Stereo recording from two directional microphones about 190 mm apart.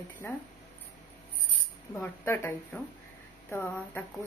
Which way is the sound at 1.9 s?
15° left (ahead or behind).